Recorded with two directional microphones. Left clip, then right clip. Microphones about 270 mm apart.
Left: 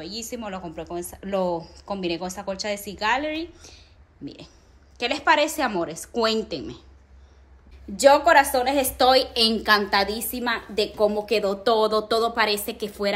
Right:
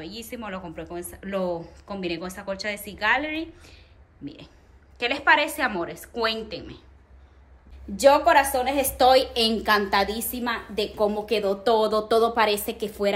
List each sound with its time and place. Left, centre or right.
0.0 s a woman's voice: centre
7.9 s a woman's voice: centre